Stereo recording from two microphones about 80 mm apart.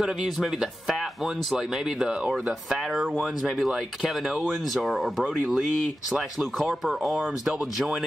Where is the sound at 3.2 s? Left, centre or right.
Centre.